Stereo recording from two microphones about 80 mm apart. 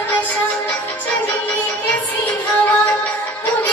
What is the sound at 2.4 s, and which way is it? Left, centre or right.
Music, centre.